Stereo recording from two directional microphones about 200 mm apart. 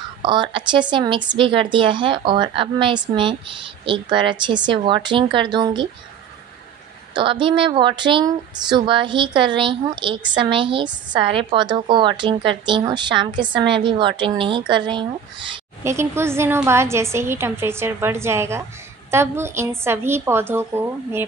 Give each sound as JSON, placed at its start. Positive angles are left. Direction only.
{"t": 0.2, "sound": "a woman's voice", "side_deg": -25}
{"t": 7.2, "sound": "a woman's voice", "side_deg": -25}